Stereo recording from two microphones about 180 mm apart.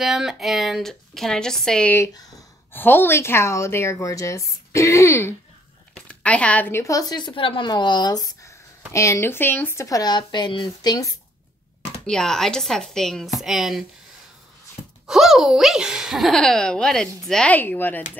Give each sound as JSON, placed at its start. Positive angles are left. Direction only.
{"t": 0.0, "sound": "a woman's voice", "side_deg": 0}
{"t": 12.1, "sound": "speech", "side_deg": 5}
{"t": 15.0, "sound": "speech", "side_deg": 0}